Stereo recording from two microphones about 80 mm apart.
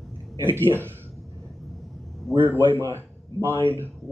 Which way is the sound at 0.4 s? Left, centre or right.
Right.